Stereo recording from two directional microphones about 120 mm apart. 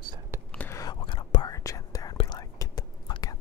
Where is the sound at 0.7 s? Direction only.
35° left (ahead or behind).